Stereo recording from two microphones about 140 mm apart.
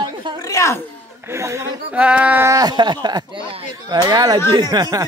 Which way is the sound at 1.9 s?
10° right (ahead or behind).